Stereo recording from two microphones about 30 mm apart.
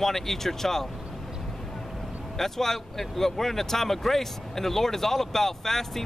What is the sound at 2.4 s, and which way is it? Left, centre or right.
Speech, centre.